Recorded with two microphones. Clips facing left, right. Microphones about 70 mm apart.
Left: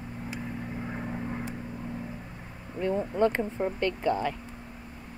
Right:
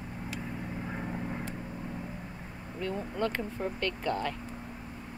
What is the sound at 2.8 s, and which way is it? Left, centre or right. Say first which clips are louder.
Speech: left 7 dB; left.